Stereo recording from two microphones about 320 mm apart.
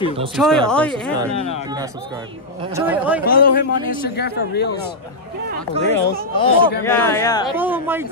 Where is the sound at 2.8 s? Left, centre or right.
Centre.